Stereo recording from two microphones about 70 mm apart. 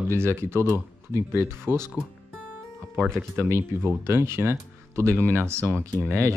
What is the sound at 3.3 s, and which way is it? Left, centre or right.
Speech, right.